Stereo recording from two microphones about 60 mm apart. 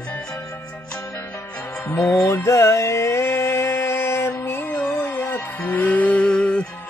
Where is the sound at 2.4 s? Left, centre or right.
Left.